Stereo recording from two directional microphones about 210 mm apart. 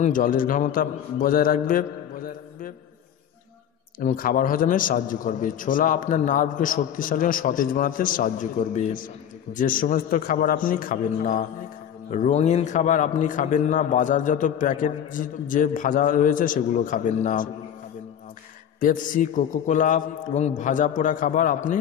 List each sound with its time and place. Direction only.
0.0 s a man's voice: 40° left (ahead or behind)
4.0 s a man's voice: 40° left (ahead or behind)
18.8 s a man's voice: 40° left (ahead or behind)